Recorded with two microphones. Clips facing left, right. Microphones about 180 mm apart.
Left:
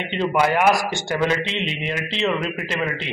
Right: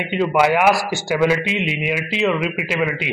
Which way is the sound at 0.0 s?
10° right (ahead or behind).